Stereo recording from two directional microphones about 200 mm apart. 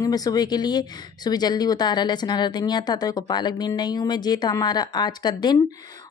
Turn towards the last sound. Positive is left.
turn(degrees=20)  # may be behind; listen again after turning